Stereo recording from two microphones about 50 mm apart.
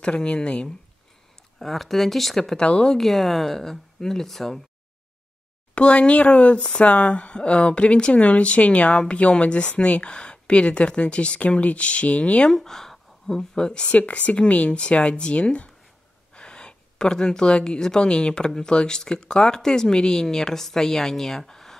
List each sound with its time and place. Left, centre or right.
0.0 s speech: centre
1.6 s speech: centre
2.6 s speech: centre
3.0 s speech: centre
5.8 s speech: left
12.4 s speech: centre
13.9 s speech: left; by 21.7 s centre